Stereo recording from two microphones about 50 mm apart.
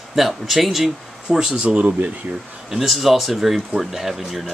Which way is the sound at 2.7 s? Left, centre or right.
Centre.